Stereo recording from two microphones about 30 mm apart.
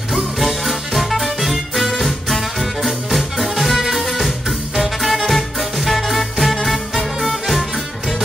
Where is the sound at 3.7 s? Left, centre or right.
Centre.